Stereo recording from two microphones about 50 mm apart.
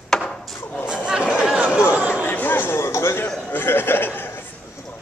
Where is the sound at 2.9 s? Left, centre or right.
Left.